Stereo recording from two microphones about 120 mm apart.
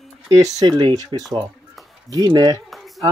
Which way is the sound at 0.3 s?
30° right (ahead or behind).